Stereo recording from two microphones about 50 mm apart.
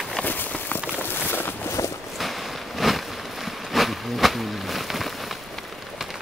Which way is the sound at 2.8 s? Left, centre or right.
Centre.